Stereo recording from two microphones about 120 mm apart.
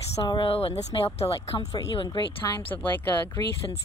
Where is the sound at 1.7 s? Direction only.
40° left (ahead or behind).